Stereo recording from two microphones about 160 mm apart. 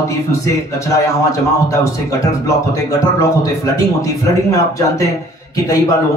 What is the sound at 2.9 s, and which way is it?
A man's voice, 20° left (ahead or behind).